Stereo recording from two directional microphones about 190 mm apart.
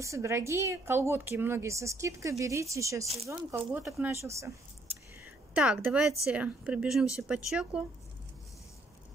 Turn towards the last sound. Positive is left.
turn(degrees=-5)  # may be behind; listen again after turning